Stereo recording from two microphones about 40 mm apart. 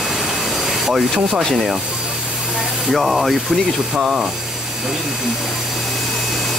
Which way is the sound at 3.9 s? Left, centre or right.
Centre.